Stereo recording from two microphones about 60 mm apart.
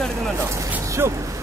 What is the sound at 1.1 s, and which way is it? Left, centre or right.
Speech, right.